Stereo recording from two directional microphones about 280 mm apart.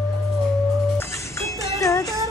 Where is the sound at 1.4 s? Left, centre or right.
Centre.